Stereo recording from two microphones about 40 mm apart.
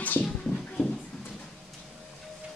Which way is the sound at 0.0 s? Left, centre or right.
Left.